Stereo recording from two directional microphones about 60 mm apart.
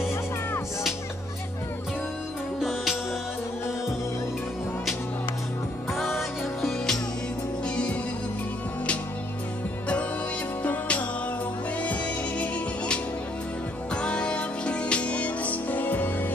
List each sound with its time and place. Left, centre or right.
2.6 s music: centre
5.9 s music: centre
7.6 s music: centre
10.6 s music: left